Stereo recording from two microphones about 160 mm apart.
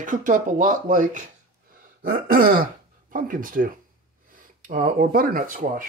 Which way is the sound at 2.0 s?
65° right (ahead or behind).